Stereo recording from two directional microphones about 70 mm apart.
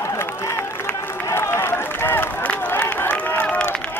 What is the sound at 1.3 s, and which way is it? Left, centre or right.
Run, left.